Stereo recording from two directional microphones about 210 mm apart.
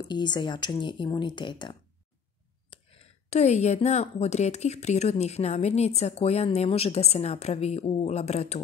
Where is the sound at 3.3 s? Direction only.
30° left (ahead or behind).